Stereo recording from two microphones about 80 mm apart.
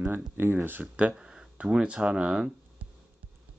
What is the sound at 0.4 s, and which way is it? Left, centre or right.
Speech, right.